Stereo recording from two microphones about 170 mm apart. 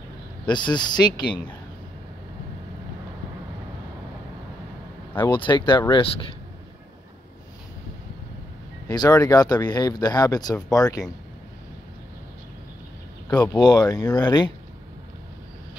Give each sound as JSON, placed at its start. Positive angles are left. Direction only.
{"t": 0.5, "sound": "speech", "side_deg": 25}
{"t": 5.3, "sound": "speech", "side_deg": 25}
{"t": 8.8, "sound": "speech", "side_deg": 20}
{"t": 13.3, "sound": "speech", "side_deg": 20}